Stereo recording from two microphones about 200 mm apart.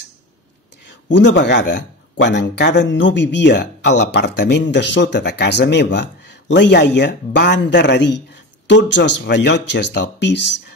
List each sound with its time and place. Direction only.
1.1 s speech: 60° left (ahead or behind)